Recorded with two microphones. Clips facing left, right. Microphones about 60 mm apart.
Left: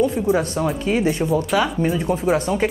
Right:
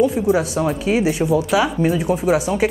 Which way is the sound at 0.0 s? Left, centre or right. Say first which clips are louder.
Right 2 dB; centre.